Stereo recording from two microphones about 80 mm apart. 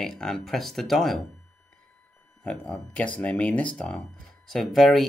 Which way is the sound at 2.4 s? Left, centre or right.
Centre.